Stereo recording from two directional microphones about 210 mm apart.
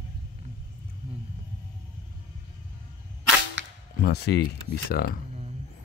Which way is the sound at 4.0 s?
50° left (ahead or behind).